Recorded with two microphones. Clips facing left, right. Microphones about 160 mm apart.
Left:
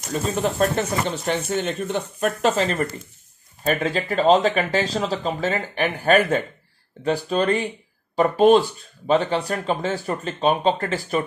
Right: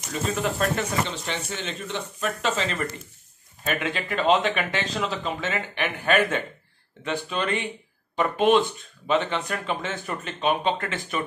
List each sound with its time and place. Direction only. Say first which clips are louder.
0.1 s speech: left 3 dB; 40° left (ahead or behind)